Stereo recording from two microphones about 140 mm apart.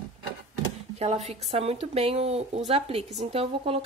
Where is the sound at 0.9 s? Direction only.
50° right (ahead or behind).